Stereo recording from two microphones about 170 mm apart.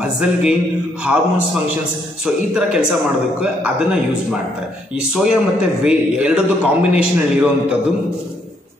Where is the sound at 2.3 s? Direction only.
5° right (ahead or behind).